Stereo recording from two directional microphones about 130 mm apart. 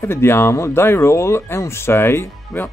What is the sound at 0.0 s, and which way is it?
Speech, 20° left (ahead or behind).